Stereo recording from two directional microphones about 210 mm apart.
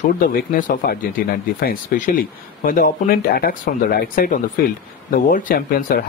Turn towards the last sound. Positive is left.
turn(degrees=45)  # may be behind; listen again after turning